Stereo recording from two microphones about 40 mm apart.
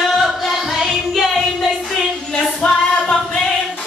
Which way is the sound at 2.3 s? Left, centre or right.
Left.